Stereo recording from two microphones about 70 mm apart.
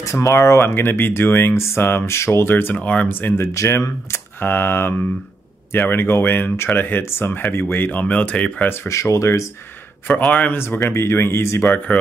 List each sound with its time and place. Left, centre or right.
0.0 s speech: left
2.5 s speech: left
3.5 s speech: left; by 8.5 s centre
8.6 s speech: left
10.0 s speech: left
10.9 s speech: left